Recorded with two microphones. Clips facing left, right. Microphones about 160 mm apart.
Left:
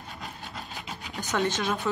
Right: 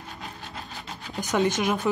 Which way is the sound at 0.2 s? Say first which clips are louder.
Even; centre (ahead or behind).